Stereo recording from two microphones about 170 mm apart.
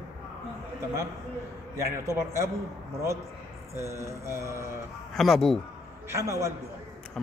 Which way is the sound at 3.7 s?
15° right (ahead or behind).